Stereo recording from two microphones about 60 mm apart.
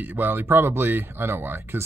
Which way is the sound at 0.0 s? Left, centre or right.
Right.